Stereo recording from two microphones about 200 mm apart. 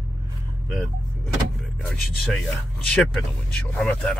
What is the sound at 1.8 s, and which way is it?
Speech, centre (ahead or behind).